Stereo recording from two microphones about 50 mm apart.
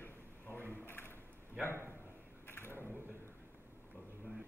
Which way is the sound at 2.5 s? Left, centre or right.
Left.